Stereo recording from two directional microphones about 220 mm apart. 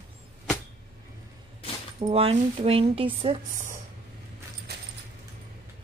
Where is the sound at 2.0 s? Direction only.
25° right (ahead or behind).